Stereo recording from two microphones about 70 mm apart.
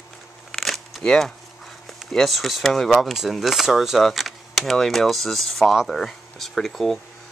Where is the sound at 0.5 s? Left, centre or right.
Centre.